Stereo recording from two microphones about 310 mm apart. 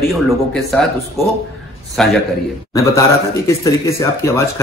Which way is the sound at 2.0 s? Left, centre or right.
Centre.